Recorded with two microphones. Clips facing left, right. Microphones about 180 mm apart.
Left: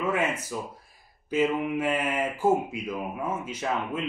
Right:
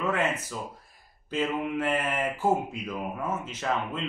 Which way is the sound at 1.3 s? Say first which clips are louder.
Left 3 dB; 10° left (ahead or behind).